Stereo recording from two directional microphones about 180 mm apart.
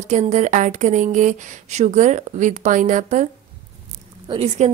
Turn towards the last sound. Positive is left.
turn(degrees=-35)  # may be behind; listen again after turning